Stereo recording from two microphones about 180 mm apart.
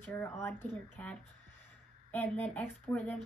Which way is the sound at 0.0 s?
10° left (ahead or behind).